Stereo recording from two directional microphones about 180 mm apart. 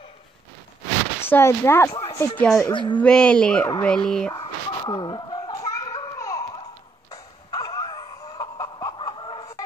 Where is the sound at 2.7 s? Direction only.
25° left (ahead or behind).